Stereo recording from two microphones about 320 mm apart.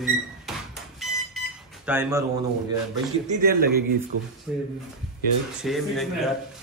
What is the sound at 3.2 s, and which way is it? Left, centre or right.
Speech, right.